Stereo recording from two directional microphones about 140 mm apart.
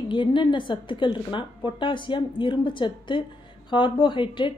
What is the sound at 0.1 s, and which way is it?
A woman's voice, 35° left (ahead or behind).